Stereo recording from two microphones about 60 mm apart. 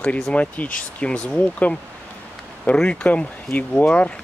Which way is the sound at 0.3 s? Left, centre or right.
Left.